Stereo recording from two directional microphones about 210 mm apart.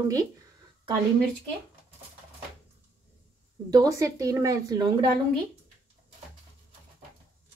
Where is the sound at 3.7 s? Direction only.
15° right (ahead or behind).